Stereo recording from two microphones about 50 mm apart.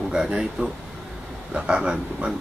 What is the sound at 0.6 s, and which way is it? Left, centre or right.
Speech, right.